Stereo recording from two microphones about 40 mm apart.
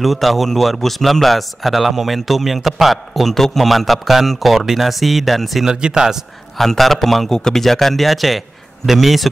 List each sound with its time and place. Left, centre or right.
0.0 s speech: centre
5.7 s speech: centre
6.6 s speech: centre